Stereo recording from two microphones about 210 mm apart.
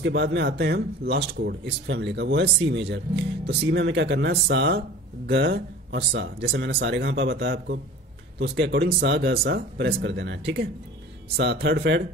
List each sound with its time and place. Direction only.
0.0 s speech: 60° right (ahead or behind)